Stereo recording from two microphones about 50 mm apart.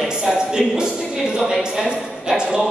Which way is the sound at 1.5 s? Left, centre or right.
Centre.